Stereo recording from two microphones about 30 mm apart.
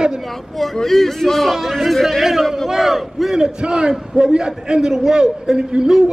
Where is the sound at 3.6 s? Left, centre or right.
Right.